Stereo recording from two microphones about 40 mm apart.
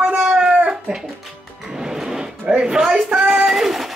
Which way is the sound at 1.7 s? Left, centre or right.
Centre.